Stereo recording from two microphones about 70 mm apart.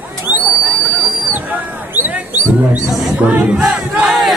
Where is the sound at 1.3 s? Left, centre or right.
Right.